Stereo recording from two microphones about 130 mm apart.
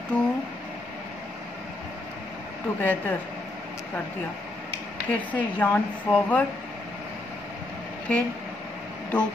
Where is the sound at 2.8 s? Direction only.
15° left (ahead or behind).